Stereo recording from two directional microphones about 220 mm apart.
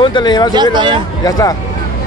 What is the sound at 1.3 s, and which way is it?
Speech, 15° left (ahead or behind).